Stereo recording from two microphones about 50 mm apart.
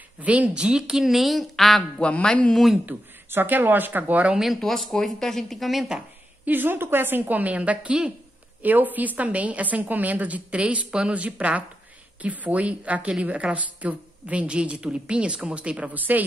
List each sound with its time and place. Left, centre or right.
0.2 s a woman's voice: right
0.6 s speech: centre
1.8 s speech: left
2.9 s a woman's voice: right
4.6 s speech: centre
6.4 s a woman's voice: right
8.6 s a woman's voice: right